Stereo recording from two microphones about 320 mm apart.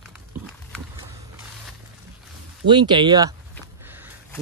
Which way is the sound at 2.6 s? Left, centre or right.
Centre.